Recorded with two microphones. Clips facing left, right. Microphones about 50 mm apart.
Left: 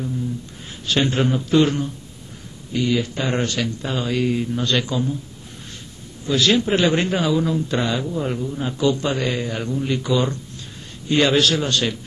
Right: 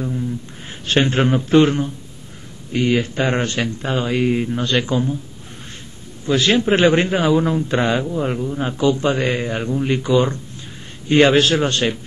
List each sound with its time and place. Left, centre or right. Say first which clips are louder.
0.8 s a man's voice: right 3 dB; right
6.2 s a man's voice: right 2 dB; right
8.1 s a man's voice: right 3 dB; right